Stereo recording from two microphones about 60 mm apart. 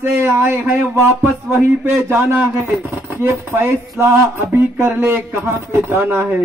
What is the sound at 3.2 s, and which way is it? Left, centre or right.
Speech, right.